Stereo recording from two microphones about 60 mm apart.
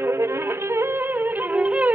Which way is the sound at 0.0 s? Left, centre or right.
Right.